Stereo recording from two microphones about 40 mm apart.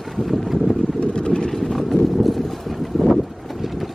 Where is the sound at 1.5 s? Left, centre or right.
Centre.